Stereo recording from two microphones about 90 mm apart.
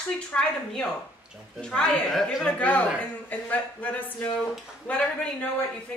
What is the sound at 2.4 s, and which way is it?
A woman's voice, 15° left (ahead or behind).